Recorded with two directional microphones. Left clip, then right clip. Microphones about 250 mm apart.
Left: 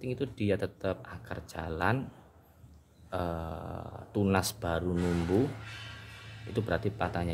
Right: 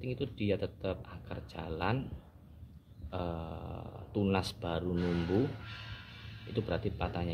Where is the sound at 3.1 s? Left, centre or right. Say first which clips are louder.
Left 4 dB; centre.